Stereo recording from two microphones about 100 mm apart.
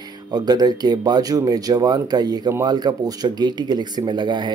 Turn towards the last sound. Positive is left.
turn(degrees=-50)  # may be behind; listen again after turning